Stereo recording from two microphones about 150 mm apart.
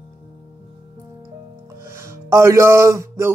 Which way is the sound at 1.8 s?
20° right (ahead or behind).